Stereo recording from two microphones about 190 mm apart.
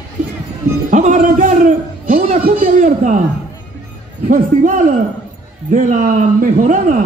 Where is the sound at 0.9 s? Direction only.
40° right (ahead or behind).